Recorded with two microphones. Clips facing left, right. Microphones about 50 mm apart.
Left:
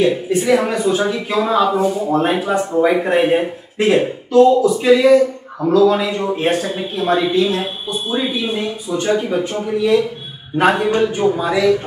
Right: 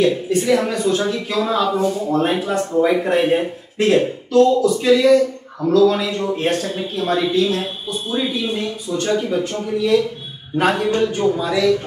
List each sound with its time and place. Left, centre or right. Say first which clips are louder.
0.0 s speech: left 1 dB; centre